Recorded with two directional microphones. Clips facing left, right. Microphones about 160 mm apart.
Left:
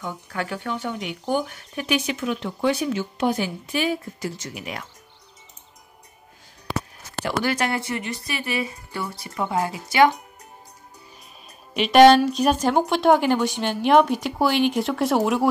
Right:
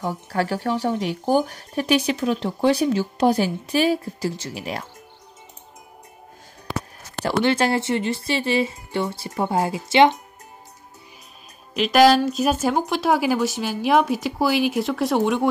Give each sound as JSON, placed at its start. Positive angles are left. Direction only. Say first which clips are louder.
{"t": 0.0, "sound": "speech", "louder": "right 6 dB", "side_deg": -35}
{"t": 7.2, "sound": "speech", "louder": "right 4 dB", "side_deg": -30}
{"t": 11.7, "sound": "speech", "louder": "left 2 dB", "side_deg": 0}